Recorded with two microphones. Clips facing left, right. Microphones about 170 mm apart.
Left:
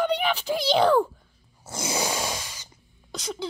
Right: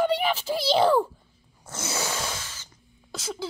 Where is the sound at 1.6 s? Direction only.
10° left (ahead or behind).